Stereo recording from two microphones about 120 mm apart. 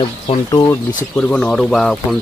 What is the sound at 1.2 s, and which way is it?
Speech, 10° left (ahead or behind).